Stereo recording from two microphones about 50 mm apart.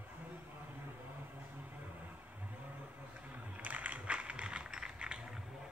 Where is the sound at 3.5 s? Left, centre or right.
Right.